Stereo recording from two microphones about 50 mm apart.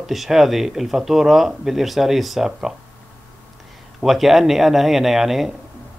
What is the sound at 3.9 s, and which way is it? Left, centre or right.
Speech, centre.